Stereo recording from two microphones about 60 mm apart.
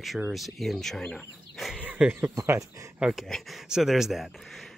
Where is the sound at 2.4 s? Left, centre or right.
Right.